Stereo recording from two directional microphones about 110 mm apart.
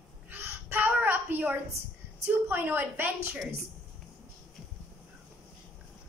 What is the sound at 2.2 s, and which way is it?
Speech, 15° right (ahead or behind).